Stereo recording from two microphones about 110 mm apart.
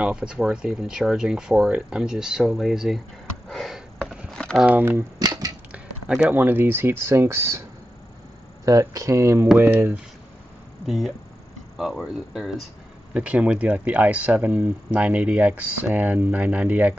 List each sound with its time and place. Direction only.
0.0 s speech: 10° right (ahead or behind)
3.4 s sniff: centre (ahead or behind)
4.3 s a sound: 5° left (ahead or behind)
4.6 s speech: 20° right (ahead or behind)
5.2 s a sound: 35° right (ahead or behind)
5.7 s a sound: 10° right (ahead or behind)
6.3 s speech: 20° right (ahead or behind)
8.6 s speech: 30° right (ahead or behind)
10.9 s speech: centre (ahead or behind)
13.1 s speech: 10° right (ahead or behind)